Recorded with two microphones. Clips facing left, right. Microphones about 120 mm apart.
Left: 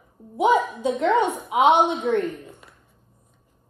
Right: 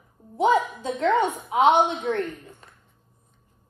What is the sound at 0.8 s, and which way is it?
Speech, 20° left (ahead or behind).